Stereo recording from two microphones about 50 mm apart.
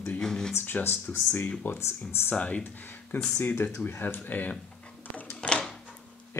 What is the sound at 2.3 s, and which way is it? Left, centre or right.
Speech, left.